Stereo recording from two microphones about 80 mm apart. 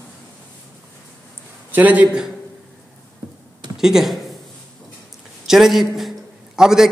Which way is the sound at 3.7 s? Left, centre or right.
Centre.